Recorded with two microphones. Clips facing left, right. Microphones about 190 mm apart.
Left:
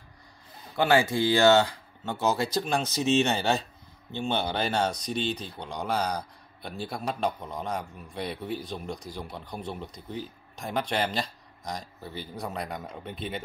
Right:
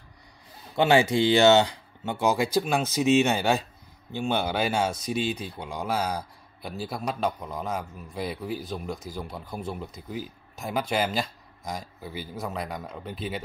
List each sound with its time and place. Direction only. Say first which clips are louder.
0.7 s speech: right 3 dB; 20° right (ahead or behind); by 13.4 s centre (ahead or behind)